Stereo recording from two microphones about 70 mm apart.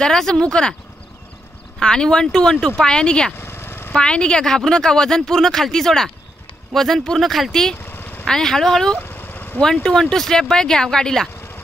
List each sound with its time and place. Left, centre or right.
0.0 s speech: centre
1.8 s speech: centre
3.3 s vehicle: left
3.9 s speech: centre
7.8 s vehicle: left
8.3 s speech: centre
9.0 s vehicle: left
9.8 s speech: centre